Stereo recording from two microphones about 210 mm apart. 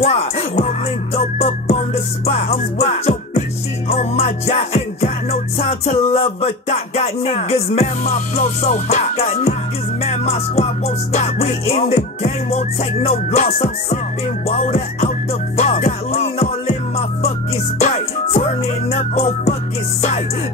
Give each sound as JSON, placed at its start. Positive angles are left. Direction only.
{"t": 0.0, "sound": "music", "side_deg": 30}